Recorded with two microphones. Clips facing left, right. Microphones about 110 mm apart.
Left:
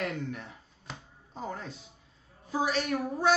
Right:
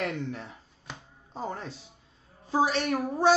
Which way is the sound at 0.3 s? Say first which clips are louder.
Right 2 dB; 30° right (ahead or behind).